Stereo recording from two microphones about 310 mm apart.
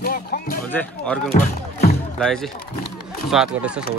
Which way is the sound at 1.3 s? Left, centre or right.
Left.